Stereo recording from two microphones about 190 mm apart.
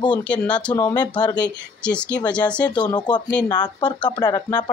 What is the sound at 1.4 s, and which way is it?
Speech, 5° left (ahead or behind).